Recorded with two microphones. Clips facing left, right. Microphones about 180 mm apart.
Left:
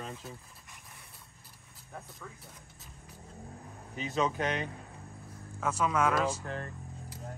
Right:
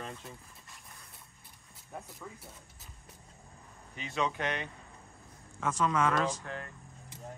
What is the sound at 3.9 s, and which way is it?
Speech, 40° left (ahead or behind).